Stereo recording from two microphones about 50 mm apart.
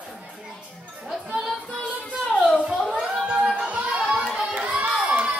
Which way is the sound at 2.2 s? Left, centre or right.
Left.